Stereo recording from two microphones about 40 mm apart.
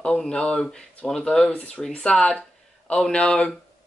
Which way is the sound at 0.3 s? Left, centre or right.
Left.